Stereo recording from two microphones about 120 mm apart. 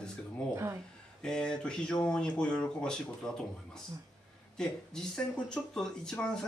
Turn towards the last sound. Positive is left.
turn(degrees=5)  # may be behind; listen again after turning